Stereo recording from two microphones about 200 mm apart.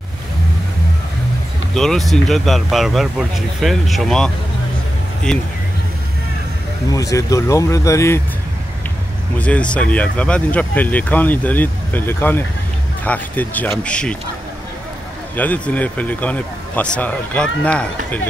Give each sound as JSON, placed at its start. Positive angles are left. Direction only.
{"t": 1.8, "sound": "speech", "side_deg": 0}
{"t": 5.3, "sound": "speech", "side_deg": 0}
{"t": 6.9, "sound": "speech", "side_deg": 15}
{"t": 9.4, "sound": "speech", "side_deg": 5}
{"t": 15.3, "sound": "speech", "side_deg": 10}